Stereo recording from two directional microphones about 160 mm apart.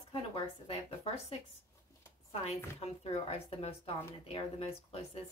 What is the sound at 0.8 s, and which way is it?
Speech, 35° left (ahead or behind).